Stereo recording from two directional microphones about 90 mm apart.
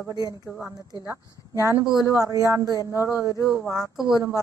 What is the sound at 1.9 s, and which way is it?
Speech, 40° left (ahead or behind).